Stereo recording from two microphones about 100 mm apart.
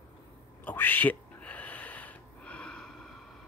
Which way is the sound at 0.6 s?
20° left (ahead or behind).